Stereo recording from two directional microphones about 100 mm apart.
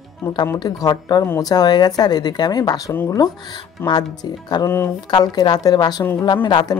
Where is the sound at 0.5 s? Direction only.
40° left (ahead or behind).